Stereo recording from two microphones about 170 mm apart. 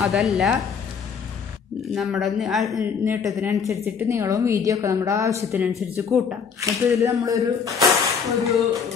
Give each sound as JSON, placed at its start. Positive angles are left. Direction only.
{"t": 0.0, "sound": "speech", "side_deg": 0}
{"t": 2.0, "sound": "speech", "side_deg": 0}
{"t": 2.8, "sound": "a woman's voice", "side_deg": -20}
{"t": 7.8, "sound": "a sound", "side_deg": 0}